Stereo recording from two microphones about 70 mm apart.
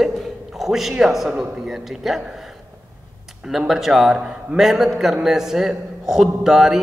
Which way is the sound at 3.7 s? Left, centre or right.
Centre.